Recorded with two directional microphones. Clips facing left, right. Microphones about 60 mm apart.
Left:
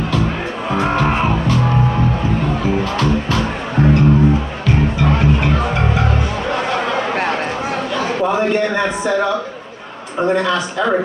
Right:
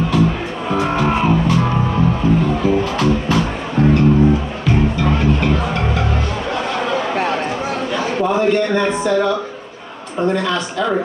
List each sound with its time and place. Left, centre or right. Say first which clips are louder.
5.0 s music: left 1 dB; centre
7.9 s a sound: even; centre
8.4 s a man's voice: right 1 dB; centre